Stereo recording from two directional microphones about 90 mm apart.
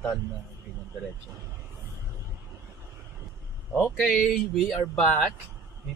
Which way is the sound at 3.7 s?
20° left (ahead or behind).